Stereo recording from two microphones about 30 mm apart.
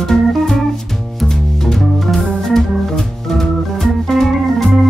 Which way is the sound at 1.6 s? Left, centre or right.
Centre.